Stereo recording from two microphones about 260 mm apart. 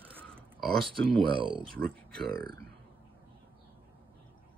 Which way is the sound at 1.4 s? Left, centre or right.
Centre.